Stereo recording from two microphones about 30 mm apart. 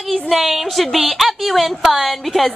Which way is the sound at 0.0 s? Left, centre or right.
Centre.